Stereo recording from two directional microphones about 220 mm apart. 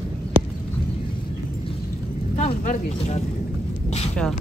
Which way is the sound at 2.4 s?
30° left (ahead or behind).